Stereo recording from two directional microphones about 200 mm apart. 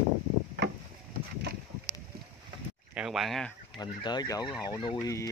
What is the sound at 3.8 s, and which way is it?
Speech, 20° left (ahead or behind).